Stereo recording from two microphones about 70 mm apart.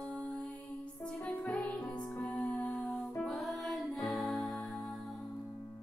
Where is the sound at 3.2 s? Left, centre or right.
Centre.